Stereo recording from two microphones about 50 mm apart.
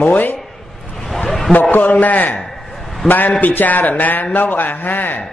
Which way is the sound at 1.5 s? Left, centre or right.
Left.